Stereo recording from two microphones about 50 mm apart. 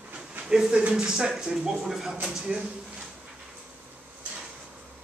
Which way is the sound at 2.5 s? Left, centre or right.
Right.